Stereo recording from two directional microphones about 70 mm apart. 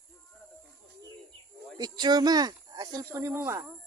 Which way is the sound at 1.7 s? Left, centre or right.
Right.